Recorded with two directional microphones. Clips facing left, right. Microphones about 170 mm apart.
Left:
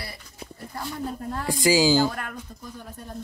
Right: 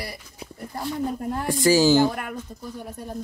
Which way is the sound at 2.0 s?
10° right (ahead or behind).